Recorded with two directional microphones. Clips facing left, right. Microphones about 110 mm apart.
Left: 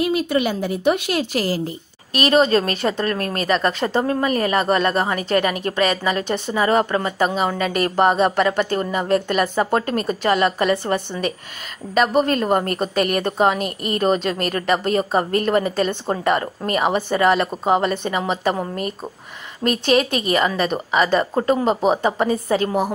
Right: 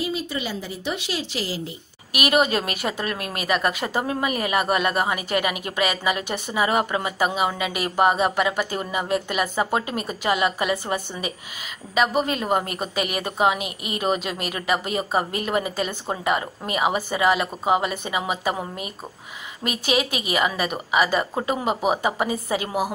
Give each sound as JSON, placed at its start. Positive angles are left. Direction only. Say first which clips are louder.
{"t": 0.0, "sound": "a woman's voice", "louder": "left 8 dB", "side_deg": 60}
{"t": 2.1, "sound": "a woman's voice", "louder": "left 5 dB", "side_deg": -10}